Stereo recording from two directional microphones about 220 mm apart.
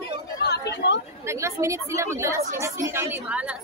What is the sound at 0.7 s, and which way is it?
Speech, 50° left (ahead or behind).